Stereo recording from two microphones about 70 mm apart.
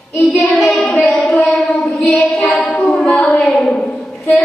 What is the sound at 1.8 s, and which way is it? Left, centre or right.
Child singing, centre.